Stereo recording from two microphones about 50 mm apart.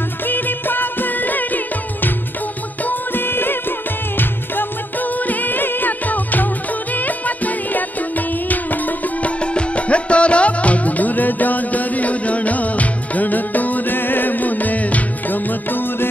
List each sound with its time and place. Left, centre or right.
0.3 s music: left
9.4 s music: left